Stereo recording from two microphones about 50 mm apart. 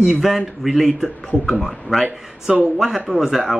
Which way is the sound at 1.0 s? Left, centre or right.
Centre.